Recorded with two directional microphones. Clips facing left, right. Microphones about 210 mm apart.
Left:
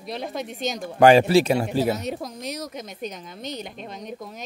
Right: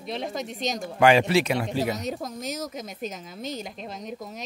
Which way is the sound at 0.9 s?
35° left (ahead or behind).